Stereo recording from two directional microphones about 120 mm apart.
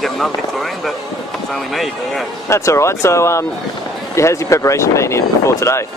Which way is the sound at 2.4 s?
25° left (ahead or behind).